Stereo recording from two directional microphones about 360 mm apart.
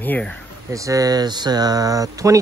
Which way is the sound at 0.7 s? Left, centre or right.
Centre.